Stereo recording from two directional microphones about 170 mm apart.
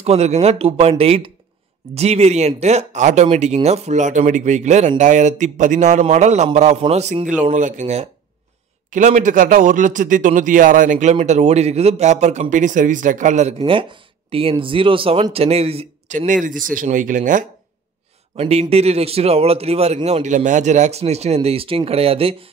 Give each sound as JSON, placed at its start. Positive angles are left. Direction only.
{"t": 0.0, "sound": "speech", "side_deg": -40}
{"t": 13.6, "sound": "speech", "side_deg": -30}
{"t": 18.3, "sound": "speech", "side_deg": -35}